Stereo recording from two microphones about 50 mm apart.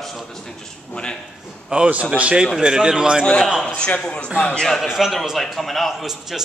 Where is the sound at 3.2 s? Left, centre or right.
Centre.